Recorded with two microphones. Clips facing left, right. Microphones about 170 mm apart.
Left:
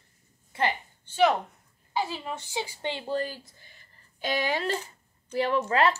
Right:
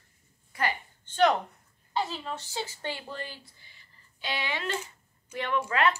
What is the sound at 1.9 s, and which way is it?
A woman's voice, 10° left (ahead or behind).